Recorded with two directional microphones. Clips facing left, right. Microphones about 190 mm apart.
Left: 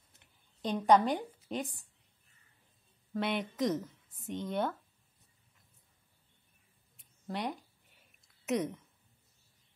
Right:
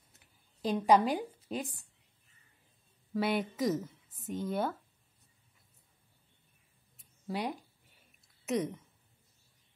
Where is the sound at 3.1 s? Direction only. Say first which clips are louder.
Right 2 dB; 5° right (ahead or behind).